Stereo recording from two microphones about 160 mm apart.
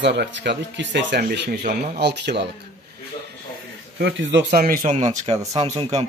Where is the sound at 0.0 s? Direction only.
90° right.